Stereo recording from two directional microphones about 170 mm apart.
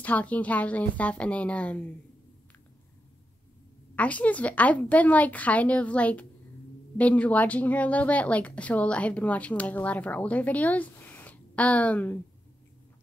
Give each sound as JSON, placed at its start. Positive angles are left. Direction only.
{"t": 0.0, "sound": "speech", "side_deg": 10}
{"t": 3.9, "sound": "speech", "side_deg": 10}